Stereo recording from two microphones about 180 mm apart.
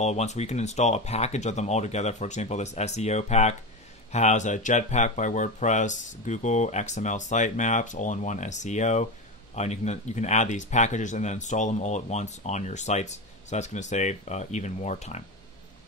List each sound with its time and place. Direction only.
0.0 s speech: 40° left (ahead or behind)